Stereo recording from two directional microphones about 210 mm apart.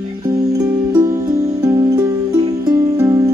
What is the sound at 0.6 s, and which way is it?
Music, 15° right (ahead or behind).